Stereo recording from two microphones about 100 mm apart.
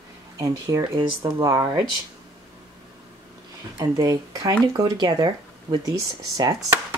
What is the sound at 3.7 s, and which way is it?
Speech, 40° right (ahead or behind).